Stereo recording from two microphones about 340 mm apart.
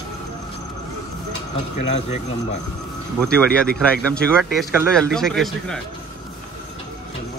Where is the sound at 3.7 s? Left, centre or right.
Centre.